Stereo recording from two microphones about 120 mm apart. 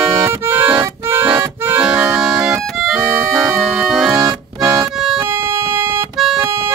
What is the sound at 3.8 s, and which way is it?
Organ, centre (ahead or behind).